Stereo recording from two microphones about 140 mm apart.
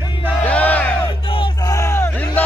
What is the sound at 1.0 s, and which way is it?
Crowd, 40° left (ahead or behind).